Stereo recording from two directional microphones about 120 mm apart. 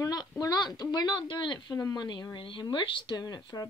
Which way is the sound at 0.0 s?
30° left (ahead or behind).